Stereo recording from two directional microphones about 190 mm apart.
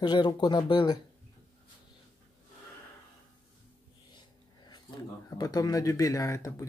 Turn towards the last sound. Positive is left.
turn(degrees=15)  # may be behind; listen again after turning